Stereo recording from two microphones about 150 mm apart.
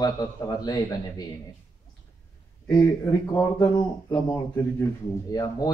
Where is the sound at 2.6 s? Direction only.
20° left (ahead or behind).